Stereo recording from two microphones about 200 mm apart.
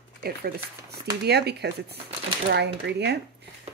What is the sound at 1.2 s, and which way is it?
Speech, 55° right (ahead or behind).